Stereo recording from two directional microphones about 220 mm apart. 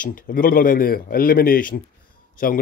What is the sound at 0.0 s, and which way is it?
Speech, 40° left (ahead or behind).